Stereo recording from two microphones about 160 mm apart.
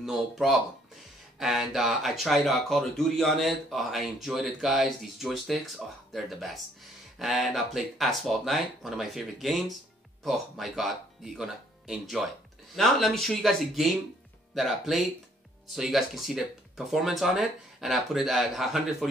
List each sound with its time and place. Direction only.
0.0 s speech: centre (ahead or behind)